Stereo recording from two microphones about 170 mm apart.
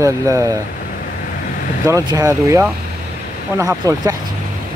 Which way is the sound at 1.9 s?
20° right (ahead or behind).